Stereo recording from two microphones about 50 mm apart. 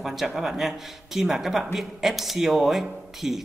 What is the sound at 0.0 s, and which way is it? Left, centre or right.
Speech, centre.